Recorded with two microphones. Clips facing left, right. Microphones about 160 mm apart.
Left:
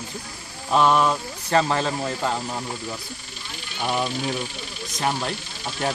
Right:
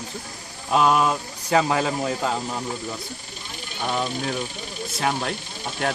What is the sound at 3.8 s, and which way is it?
Speech, 10° left (ahead or behind).